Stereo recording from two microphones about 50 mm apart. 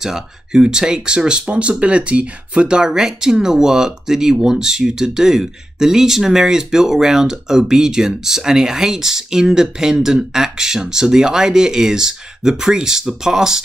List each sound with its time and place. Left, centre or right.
0.0 s speech: centre